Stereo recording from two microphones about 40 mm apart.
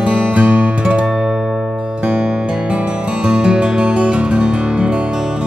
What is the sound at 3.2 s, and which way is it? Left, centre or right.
Music, right.